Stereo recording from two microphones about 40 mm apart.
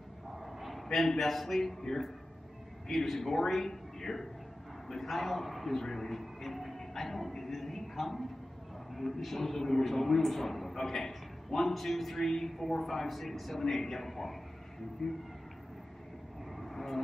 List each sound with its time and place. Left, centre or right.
0.3 s bow-wow: centre
0.9 s speech: centre
4.8 s a sound: centre
8.9 s a man's voice: centre
15.0 s speech: centre
16.4 s vehicle: centre